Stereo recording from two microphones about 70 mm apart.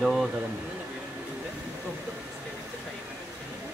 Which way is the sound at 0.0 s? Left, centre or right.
Centre.